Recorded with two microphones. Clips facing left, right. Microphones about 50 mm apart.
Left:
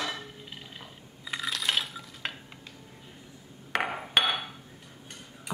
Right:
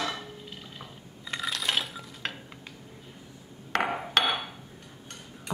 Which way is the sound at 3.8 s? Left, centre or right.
Centre.